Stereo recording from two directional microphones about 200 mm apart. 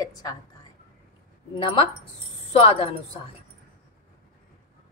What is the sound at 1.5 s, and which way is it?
A woman's voice, 25° left (ahead or behind).